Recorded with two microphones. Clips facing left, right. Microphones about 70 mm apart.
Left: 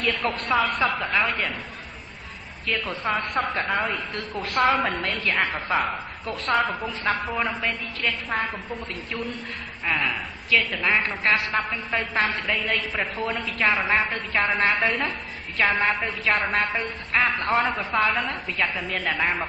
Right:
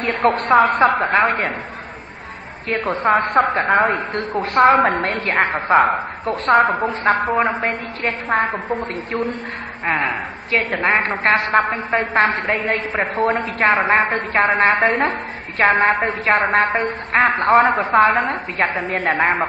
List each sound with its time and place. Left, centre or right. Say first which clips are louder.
0.0 s a woman's voice: right 8 dB; right
2.7 s a woman's voice: right 9 dB; right